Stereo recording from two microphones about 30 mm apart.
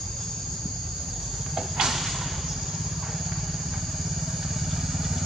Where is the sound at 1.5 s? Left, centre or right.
Centre.